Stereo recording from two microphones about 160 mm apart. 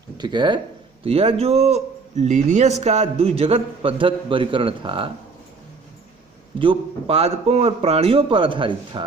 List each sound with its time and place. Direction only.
0.2 s a man's voice: 30° right (ahead or behind)
6.6 s a man's voice: 35° right (ahead or behind)